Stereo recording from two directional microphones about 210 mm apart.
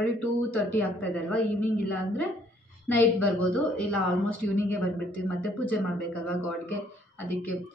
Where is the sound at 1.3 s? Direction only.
5° left (ahead or behind).